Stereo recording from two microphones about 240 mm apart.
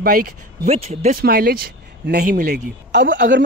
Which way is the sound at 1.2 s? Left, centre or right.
Right.